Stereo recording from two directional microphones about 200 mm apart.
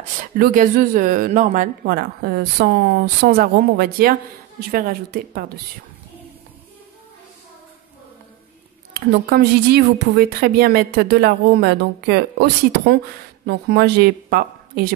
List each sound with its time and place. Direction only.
0.4 s speech: 40° right (ahead or behind)
1.9 s speech: 50° right (ahead or behind)
8.9 s speech: 50° right (ahead or behind)